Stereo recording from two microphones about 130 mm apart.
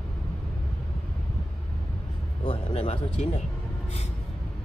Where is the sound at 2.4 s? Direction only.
45° left (ahead or behind).